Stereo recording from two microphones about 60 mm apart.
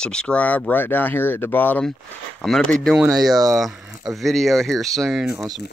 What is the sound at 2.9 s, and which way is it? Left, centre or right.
Speech, centre.